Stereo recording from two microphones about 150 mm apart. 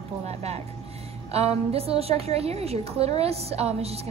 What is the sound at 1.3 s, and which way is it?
A woman's voice, 45° right (ahead or behind).